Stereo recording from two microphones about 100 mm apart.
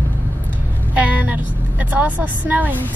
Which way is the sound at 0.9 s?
15° right (ahead or behind).